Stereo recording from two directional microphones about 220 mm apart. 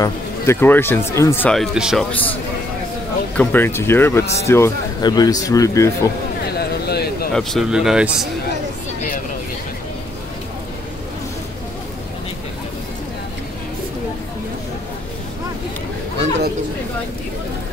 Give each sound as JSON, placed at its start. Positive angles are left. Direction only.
{"t": 0.0, "sound": "speech", "side_deg": 10}
{"t": 3.3, "sound": "speech", "side_deg": 10}
{"t": 6.9, "sound": "a sound", "side_deg": 45}
{"t": 7.3, "sound": "speech", "side_deg": 0}